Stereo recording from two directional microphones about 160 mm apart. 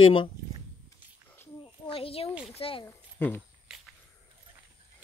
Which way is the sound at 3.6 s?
5° right (ahead or behind).